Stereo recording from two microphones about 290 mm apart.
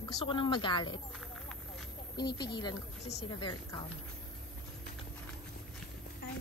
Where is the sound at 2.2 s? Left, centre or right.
Centre.